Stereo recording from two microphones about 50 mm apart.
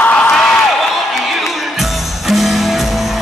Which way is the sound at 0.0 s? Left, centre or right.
Left.